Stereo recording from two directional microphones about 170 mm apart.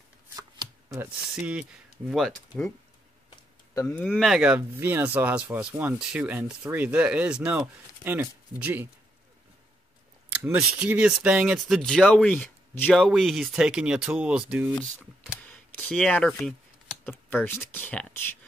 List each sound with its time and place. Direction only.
0.4 s shuffling cards: 20° right (ahead or behind)
1.0 s speech: 5° right (ahead or behind)
3.7 s speech: 10° left (ahead or behind); by 8.8 s 10° right (ahead or behind)
10.3 s speech: 10° right (ahead or behind)
15.4 s a sound: 10° left (ahead or behind)
17.3 s speech: 10° left (ahead or behind)